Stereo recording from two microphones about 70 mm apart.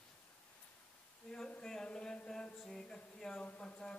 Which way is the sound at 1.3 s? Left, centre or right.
Centre.